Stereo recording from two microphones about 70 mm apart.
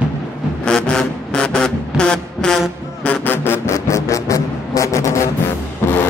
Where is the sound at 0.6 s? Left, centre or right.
Centre; by 5.2 s left.